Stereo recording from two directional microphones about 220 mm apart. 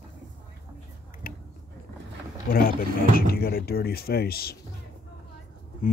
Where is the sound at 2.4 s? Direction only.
40° left (ahead or behind).